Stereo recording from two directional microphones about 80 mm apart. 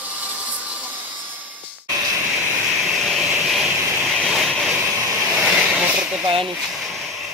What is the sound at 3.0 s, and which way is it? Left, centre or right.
Vacuum cleaner, centre.